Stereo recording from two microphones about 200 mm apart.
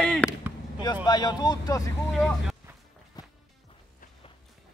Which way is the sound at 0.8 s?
20° left (ahead or behind).